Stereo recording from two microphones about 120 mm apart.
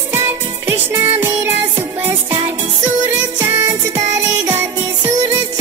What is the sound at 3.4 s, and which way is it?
Music, 25° right (ahead or behind).